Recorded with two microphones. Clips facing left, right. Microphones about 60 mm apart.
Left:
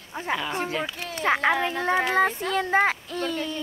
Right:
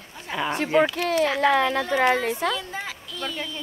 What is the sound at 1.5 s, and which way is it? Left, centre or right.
Speech, right.